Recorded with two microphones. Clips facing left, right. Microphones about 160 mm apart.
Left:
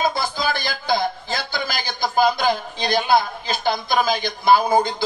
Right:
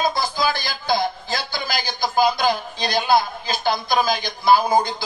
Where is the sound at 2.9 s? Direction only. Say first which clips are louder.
Left 1 dB; 55° left (ahead or behind).